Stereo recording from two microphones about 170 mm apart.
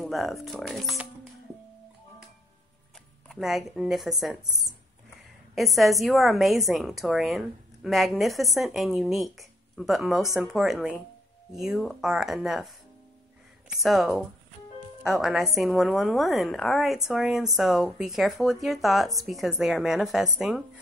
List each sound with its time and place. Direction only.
0.0 s a woman's voice: centre (ahead or behind)
3.3 s a woman's voice: centre (ahead or behind)